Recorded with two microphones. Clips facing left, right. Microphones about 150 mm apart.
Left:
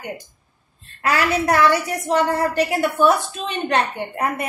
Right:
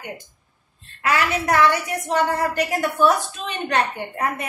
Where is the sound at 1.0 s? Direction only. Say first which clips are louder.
Left 2 dB; 35° left (ahead or behind).